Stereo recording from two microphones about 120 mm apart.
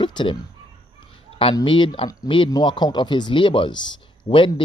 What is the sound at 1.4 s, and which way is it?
Speech, 45° left (ahead or behind).